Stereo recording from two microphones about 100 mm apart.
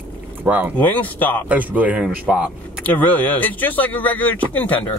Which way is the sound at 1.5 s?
15° right (ahead or behind).